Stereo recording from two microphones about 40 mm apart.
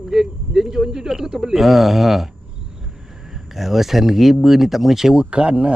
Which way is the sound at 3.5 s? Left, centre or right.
Centre.